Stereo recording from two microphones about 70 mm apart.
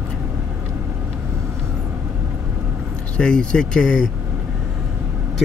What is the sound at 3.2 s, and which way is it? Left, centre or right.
Speech, centre.